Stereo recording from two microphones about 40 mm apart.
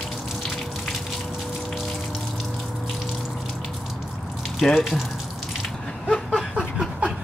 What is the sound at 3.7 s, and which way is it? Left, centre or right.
Water, centre.